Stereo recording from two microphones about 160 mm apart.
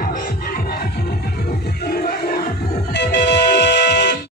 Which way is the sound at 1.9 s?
70° left (ahead or behind).